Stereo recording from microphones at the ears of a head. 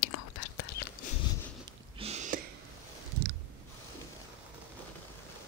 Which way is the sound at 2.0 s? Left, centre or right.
Right.